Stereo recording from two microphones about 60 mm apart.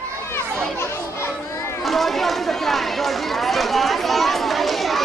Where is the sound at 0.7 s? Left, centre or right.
Left.